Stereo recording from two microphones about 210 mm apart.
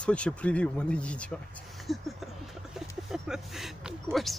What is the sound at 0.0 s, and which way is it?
Speech, 5° left (ahead or behind).